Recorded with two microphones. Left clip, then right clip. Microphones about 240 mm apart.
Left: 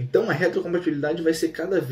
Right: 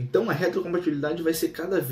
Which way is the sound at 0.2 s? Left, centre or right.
Centre.